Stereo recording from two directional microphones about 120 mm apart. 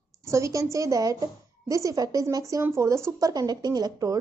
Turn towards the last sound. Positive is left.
turn(degrees=-30)  # may be behind; listen again after turning